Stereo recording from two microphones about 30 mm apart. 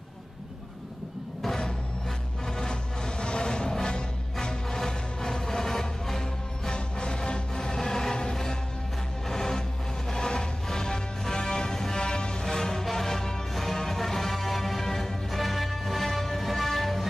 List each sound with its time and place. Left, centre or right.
2.4 s music: centre
4.6 s music: centre
6.7 s music: left; by 17.0 s centre